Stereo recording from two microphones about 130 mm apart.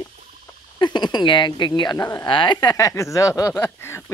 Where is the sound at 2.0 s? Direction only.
25° left (ahead or behind).